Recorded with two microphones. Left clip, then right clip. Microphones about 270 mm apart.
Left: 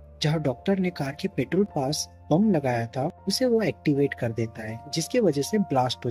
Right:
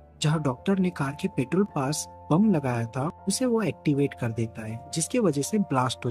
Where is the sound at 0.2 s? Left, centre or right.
Right.